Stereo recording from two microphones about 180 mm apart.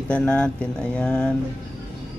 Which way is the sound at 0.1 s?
5° left (ahead or behind).